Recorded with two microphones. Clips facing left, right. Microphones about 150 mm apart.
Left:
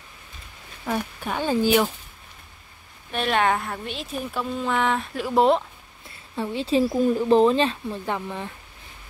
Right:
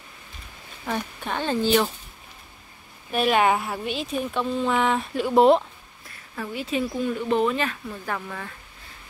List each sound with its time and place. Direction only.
0.8 s speech: 5° left (ahead or behind)
3.1 s a woman's voice: 5° right (ahead or behind)
6.0 s speech: 25° left (ahead or behind)